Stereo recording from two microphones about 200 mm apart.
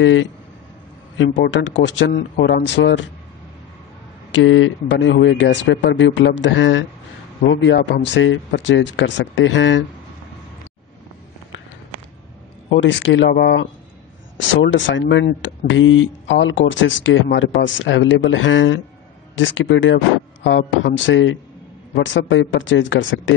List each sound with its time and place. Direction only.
0.0 s speech: 70° left (ahead or behind)
4.3 s speech: 70° left (ahead or behind)
12.6 s speech: 65° left (ahead or behind)
14.5 s speech: 70° left (ahead or behind)